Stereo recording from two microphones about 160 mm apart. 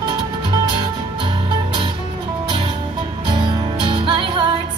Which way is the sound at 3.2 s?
30° right (ahead or behind).